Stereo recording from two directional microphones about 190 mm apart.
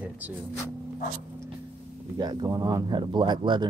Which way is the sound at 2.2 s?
20° right (ahead or behind).